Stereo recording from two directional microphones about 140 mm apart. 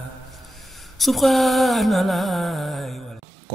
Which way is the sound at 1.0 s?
Centre (ahead or behind).